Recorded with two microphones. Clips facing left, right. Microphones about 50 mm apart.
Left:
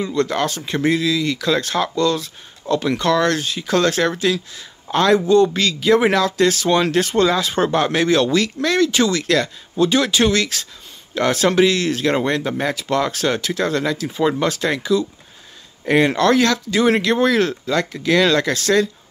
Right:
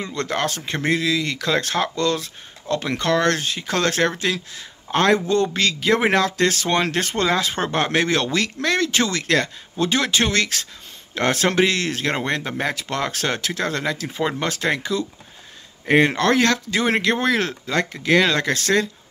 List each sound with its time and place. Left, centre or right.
0.0 s speech: right
5.9 s speech: right
12.3 s speech: right
14.0 s speech: right
15.8 s speech: right